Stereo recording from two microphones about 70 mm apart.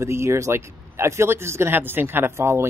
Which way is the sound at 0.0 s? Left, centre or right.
Right.